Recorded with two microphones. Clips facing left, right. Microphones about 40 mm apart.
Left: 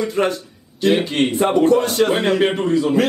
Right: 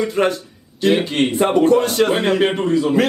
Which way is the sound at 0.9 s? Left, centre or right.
Centre.